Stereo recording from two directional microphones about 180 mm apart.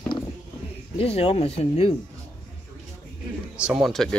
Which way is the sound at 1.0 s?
30° left (ahead or behind).